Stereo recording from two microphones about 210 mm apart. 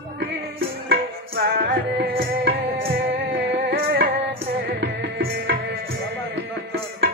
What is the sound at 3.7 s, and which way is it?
Music, 45° right (ahead or behind).